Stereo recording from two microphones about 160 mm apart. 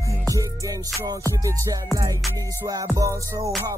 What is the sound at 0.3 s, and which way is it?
Music, 20° right (ahead or behind).